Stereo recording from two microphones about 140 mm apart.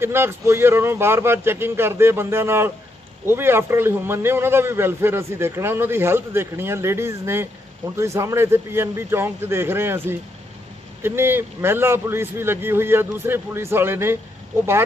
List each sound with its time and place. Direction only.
0.0 s a man's voice: 15° right (ahead or behind)